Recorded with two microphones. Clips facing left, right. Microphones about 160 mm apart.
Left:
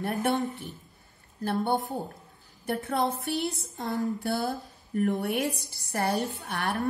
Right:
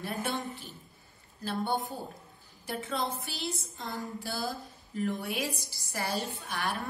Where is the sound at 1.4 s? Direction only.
60° left (ahead or behind).